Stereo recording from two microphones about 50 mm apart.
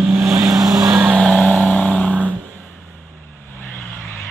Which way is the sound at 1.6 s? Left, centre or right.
Left.